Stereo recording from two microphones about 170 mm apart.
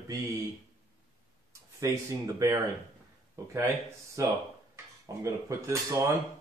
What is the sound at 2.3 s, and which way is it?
Speech, 20° right (ahead or behind).